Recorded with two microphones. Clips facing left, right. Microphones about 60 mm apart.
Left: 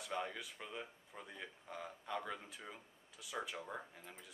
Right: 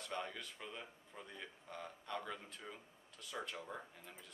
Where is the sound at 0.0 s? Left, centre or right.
Centre.